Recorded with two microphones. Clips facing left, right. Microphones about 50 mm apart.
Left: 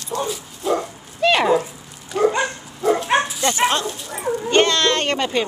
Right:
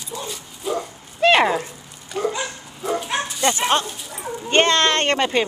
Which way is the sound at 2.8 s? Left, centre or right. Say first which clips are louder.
Left 6 dB; centre.